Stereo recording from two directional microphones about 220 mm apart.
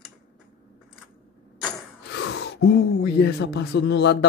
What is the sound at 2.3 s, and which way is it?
Speech, 50° left (ahead or behind).